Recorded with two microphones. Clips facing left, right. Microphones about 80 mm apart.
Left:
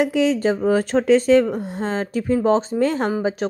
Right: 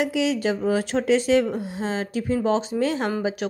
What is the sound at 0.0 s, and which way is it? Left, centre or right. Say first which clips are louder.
Speech: left 4 dB; left.